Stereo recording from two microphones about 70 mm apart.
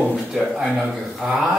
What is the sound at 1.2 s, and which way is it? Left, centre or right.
Speech, centre.